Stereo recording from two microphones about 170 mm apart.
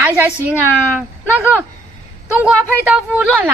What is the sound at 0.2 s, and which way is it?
Speech, 10° right (ahead or behind).